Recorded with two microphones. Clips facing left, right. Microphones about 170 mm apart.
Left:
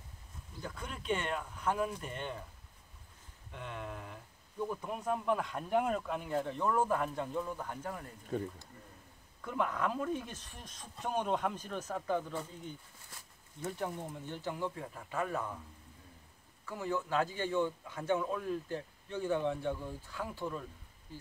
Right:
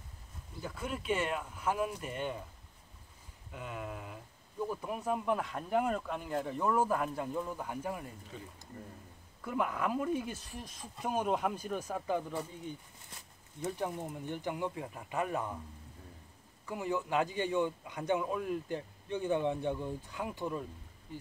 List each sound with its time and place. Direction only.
0.6 s speech: 5° right (ahead or behind)
3.5 s speech: 5° right (ahead or behind)
8.3 s speech: 55° left (ahead or behind)
9.4 s a man's voice: 5° right (ahead or behind)
13.6 s a man's voice: 20° right (ahead or behind)
16.6 s a man's voice: 15° right (ahead or behind)